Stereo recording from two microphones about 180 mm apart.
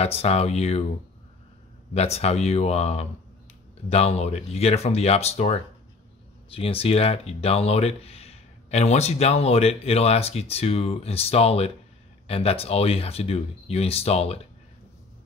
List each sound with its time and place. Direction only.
0.0 s speech: 35° left (ahead or behind)
2.0 s speech: 35° left (ahead or behind)